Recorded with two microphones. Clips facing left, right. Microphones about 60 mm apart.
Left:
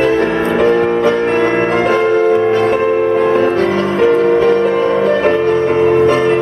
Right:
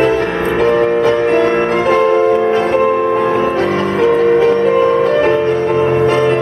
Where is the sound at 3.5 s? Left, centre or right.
Centre.